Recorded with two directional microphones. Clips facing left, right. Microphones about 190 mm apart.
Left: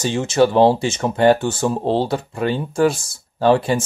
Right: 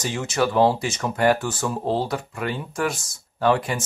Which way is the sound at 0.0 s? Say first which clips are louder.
Left 7 dB; 25° left (ahead or behind).